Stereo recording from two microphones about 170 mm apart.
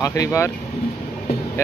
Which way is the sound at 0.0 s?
20° left (ahead or behind).